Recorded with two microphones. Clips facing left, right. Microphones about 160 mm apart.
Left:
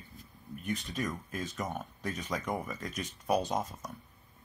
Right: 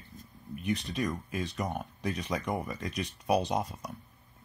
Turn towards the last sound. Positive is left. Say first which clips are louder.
# right 2 dB
turn(degrees=0)  # may be behind; listen again after turning